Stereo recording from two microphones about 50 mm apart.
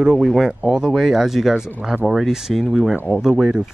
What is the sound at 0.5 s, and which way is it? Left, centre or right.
Speech, centre.